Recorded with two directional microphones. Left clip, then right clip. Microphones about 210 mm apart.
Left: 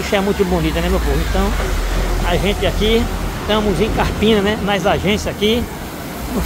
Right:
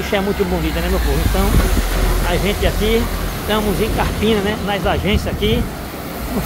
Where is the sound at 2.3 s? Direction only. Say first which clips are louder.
Left 2 dB; 15° left (ahead or behind).